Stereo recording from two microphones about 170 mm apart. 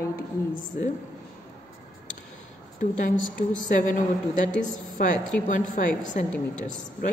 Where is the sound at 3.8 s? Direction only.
50° left (ahead or behind).